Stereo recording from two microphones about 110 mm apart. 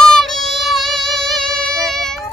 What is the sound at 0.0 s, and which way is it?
Music, 5° left (ahead or behind).